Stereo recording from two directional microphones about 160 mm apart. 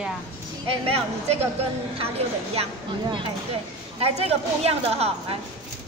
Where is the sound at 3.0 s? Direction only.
30° right (ahead or behind).